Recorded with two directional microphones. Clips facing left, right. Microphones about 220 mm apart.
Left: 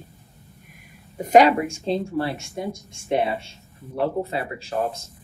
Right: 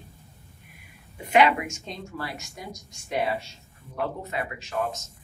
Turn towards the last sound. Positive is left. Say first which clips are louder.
# left 4 dB
turn(degrees=30)  # may be behind; listen again after turning